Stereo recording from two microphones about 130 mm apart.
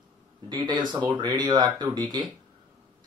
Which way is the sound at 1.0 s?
35° right (ahead or behind).